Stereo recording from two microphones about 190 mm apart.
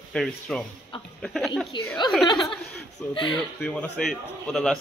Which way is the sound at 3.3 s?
5° left (ahead or behind).